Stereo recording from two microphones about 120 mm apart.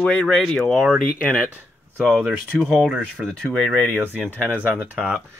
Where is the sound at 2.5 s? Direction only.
Centre (ahead or behind).